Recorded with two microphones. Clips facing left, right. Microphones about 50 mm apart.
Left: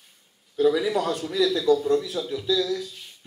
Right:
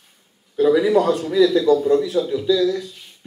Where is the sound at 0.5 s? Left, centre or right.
Centre.